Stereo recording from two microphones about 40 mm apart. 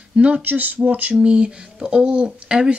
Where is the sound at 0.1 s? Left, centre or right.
Right.